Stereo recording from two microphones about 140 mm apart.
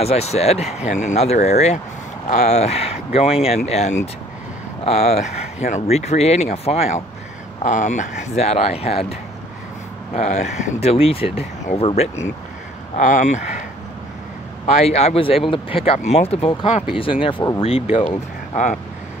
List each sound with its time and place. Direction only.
0.0 s speech: 45° left (ahead or behind)
7.6 s speech: 60° left (ahead or behind)
10.1 s speech: 55° left (ahead or behind)
12.9 s speech: 60° left (ahead or behind)
14.7 s speech: 50° left (ahead or behind)
18.5 s speech: 60° left (ahead or behind)